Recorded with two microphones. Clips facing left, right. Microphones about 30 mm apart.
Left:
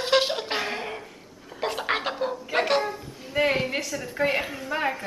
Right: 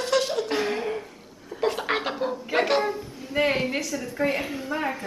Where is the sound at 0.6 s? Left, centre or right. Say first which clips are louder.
Right 4 dB; centre.